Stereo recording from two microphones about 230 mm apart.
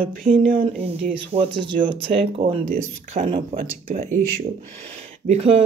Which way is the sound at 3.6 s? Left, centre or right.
Right.